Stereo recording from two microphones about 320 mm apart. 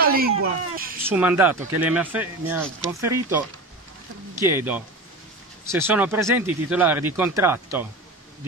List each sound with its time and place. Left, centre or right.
0.0 s a sound: right
1.0 s speech: centre
4.4 s speech: centre